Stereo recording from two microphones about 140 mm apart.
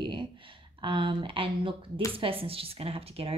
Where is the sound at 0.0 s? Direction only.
35° right (ahead or behind).